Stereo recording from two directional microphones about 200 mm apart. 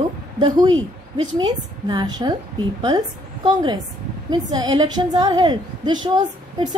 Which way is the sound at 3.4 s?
25° right (ahead or behind).